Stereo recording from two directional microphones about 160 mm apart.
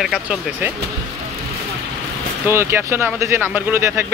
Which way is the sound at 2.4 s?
15° right (ahead or behind).